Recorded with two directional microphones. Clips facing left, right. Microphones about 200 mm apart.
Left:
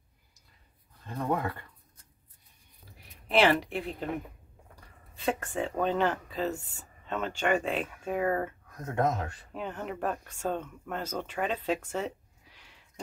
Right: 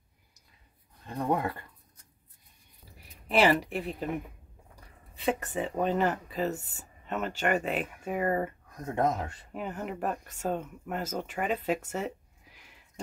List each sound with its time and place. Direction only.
1.0 s speech: 15° right (ahead or behind)
3.3 s speech: 5° right (ahead or behind)
5.2 s speech: 5° right (ahead or behind)